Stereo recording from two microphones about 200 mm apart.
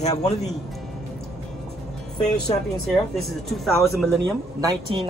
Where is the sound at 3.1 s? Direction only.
Centre (ahead or behind).